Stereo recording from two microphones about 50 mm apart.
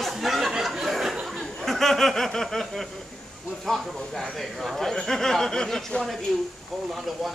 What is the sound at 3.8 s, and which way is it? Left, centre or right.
A man's voice, centre.